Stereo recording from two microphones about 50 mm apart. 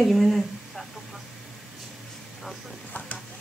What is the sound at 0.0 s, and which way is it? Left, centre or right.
Speech, centre.